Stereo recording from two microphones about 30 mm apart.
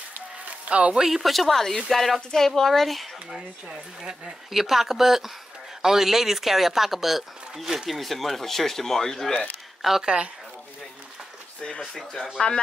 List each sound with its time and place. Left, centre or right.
0.7 s speech: right
1.0 s speech: centre
4.5 s speech: centre
7.9 s speech: centre
9.8 s speech: centre
10.0 s speech: right
11.8 s speech: centre